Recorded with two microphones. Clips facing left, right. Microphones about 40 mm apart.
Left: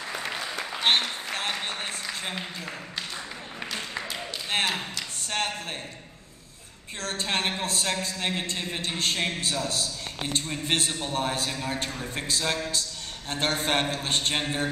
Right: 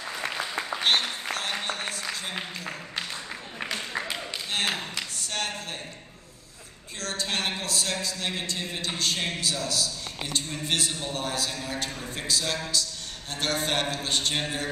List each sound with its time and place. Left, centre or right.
0.8 s applause: left
5.2 s a sound: left
7.0 s a man's voice: left